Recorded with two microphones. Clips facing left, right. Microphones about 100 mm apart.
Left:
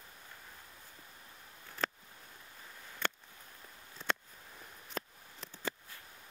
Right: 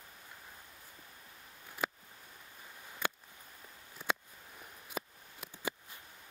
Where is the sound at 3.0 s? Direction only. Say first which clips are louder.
Even; 10° right (ahead or behind).